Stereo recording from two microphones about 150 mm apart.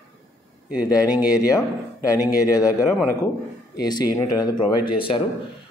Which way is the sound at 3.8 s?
25° left (ahead or behind).